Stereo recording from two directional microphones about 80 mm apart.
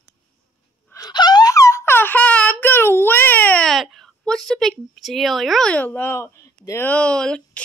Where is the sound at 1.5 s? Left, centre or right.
Left.